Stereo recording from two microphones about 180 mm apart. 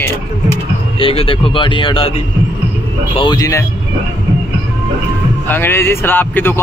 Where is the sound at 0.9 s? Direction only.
30° left (ahead or behind).